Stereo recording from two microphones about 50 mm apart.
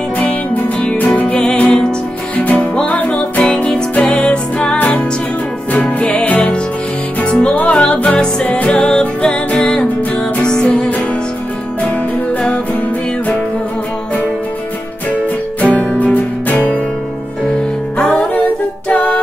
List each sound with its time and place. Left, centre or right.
0.2 s music: left
0.9 s music: left
1.4 s music: centre
15.7 s music: left
17.9 s music: centre
18.9 s music: left